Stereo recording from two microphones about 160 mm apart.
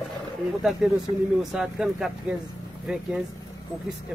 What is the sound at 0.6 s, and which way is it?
Speech, 5° right (ahead or behind).